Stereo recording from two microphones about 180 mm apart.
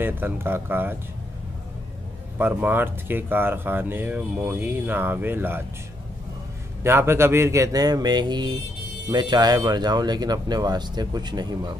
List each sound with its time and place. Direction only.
0.0 s speech: 10° right (ahead or behind)
2.3 s speech: 10° right (ahead or behind)
6.8 s speech: 15° right (ahead or behind)